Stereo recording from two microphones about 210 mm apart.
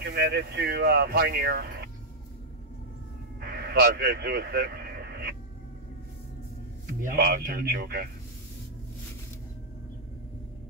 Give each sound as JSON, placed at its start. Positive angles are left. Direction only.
{"t": 0.0, "sound": "speech", "side_deg": -50}
{"t": 3.3, "sound": "a sound", "side_deg": -50}
{"t": 7.0, "sound": "speech", "side_deg": -45}